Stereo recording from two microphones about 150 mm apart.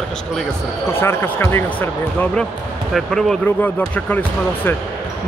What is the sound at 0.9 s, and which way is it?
Speech, 15° left (ahead or behind).